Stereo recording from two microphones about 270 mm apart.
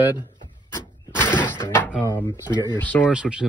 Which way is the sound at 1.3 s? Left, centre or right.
Centre.